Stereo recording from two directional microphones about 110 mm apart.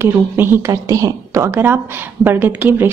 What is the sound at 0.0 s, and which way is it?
A woman's voice, 20° right (ahead or behind).